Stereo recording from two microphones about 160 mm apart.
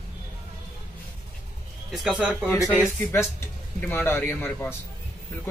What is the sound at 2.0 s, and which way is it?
Speech, 5° right (ahead or behind).